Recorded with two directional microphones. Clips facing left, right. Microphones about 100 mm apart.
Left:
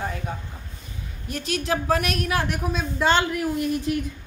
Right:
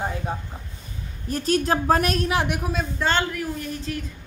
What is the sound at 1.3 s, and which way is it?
Speech, 40° right (ahead or behind).